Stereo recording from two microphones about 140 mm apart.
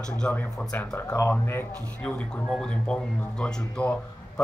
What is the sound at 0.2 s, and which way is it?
Speech, 10° left (ahead or behind).